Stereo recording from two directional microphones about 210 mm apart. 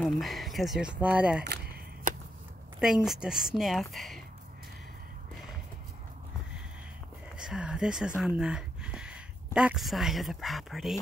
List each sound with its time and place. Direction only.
0.0 s speech: centre (ahead or behind)
1.4 s a sound: 45° right (ahead or behind)
2.8 s speech: centre (ahead or behind)
7.3 s speech: 5° right (ahead or behind)